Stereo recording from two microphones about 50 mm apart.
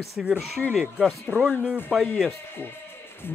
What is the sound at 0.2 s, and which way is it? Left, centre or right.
Speech, centre.